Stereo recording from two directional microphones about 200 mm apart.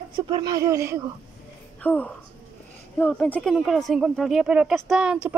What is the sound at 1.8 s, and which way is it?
Speech, 5° left (ahead or behind).